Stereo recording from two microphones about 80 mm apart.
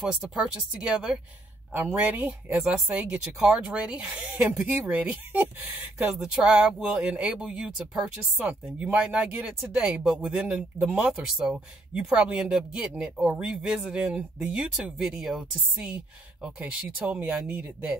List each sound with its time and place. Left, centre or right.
0.0 s speech: centre
16.4 s speech: centre